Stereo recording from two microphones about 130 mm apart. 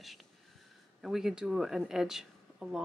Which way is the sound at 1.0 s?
5° right (ahead or behind).